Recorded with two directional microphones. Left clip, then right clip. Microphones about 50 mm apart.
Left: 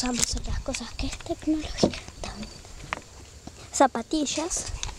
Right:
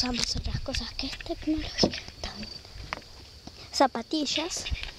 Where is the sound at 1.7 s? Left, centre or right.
Centre.